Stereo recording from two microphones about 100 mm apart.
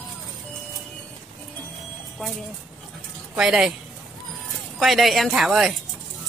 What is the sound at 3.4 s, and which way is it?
Speech, 5° right (ahead or behind).